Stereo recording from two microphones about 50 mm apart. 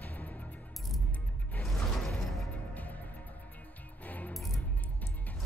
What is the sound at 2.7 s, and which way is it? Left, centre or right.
Music, left.